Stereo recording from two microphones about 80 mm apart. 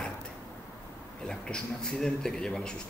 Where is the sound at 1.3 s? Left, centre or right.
Centre.